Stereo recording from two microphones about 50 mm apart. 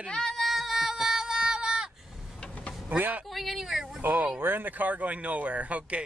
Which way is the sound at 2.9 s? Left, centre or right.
Right.